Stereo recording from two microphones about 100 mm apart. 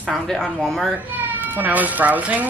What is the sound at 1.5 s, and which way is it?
Speech, 15° right (ahead or behind).